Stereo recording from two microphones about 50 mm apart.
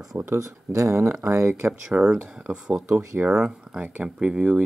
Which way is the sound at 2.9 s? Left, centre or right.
Right.